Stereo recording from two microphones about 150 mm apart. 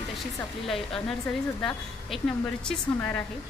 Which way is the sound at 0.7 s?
5° left (ahead or behind).